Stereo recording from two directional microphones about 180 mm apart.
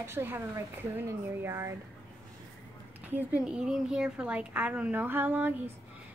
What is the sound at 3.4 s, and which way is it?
Speech, 5° right (ahead or behind).